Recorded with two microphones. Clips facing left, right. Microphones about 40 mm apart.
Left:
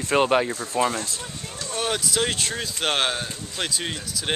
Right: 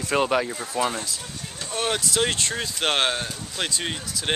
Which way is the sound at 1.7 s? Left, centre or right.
Centre.